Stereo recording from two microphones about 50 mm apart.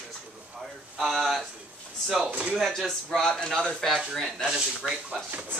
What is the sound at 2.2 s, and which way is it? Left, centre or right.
Speech, right.